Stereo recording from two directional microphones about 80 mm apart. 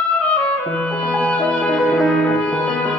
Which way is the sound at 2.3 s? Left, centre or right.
Centre.